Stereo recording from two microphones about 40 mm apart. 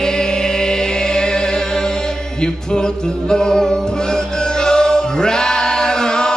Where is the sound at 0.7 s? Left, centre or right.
Centre.